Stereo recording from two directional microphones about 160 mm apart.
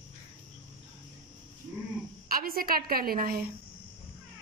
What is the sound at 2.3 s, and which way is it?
A woman's voice, 65° right (ahead or behind).